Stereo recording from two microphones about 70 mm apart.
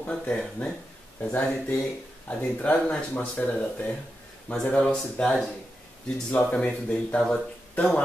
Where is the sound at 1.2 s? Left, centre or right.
Left.